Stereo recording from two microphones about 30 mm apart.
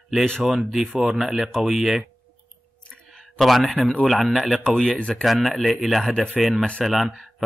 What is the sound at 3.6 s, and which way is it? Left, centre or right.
Speech, centre.